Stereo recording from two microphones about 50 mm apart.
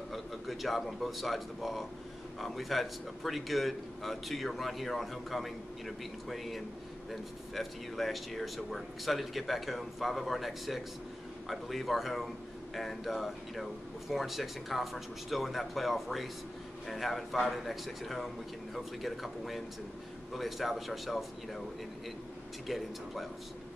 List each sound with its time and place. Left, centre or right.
0.1 s a man's voice: centre
22.7 s a man's voice: centre